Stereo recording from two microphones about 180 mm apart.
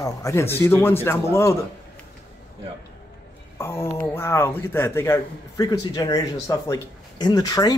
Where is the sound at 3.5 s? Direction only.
15° left (ahead or behind).